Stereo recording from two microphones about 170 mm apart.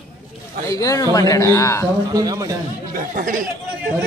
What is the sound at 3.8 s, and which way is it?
Speech, 5° right (ahead or behind).